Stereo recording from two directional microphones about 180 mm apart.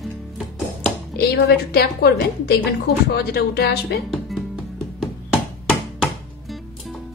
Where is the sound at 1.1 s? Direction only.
60° left (ahead or behind).